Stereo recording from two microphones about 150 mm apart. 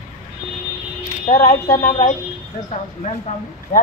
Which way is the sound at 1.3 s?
50° left (ahead or behind).